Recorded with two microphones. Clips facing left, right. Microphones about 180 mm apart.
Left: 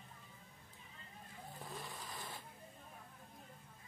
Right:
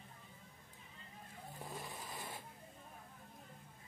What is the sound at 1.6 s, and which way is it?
Vehicle, 20° right (ahead or behind).